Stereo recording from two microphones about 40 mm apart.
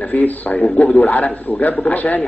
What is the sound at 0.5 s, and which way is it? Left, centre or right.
Speech, left.